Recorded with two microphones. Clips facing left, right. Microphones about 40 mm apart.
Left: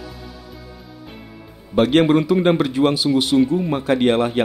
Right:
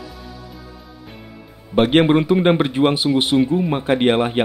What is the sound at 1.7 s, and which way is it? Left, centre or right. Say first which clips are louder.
A man's voice: even; right.